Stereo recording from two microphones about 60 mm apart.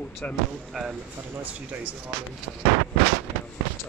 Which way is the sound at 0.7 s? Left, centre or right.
Centre.